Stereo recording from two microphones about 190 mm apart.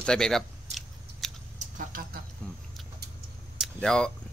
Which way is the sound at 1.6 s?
45° right (ahead or behind).